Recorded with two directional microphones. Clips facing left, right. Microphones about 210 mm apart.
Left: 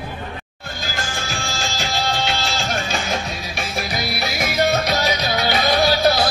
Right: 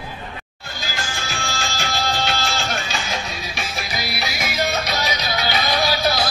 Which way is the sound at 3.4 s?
Centre (ahead or behind).